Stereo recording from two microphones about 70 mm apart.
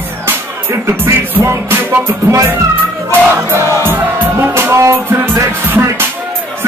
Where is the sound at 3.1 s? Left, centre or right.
Right.